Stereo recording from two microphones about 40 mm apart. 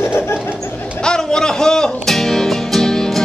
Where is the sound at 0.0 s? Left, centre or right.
Left.